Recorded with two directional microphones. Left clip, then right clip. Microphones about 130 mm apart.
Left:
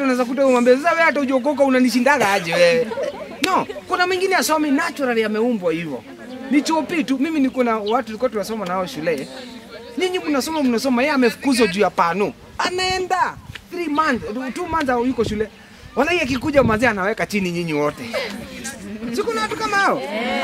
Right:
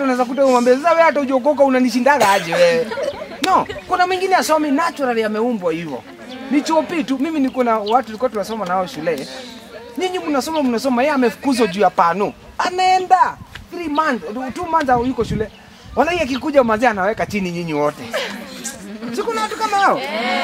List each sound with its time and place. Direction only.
0.0 s speech: 5° left (ahead or behind)
14.5 s speech: 5° left (ahead or behind)
19.1 s speech: 5° left (ahead or behind)
20.0 s speech: 45° right (ahead or behind)